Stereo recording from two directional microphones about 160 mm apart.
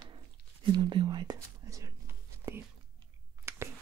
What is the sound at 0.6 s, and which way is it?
Speech, 30° right (ahead or behind).